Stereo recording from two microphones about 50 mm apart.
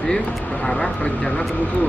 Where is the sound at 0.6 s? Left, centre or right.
Left.